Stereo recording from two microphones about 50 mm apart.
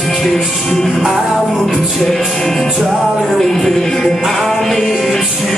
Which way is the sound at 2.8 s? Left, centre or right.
Centre.